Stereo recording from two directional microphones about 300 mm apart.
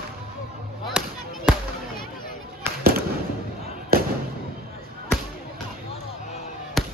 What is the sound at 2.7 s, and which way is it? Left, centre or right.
Fireworks, centre.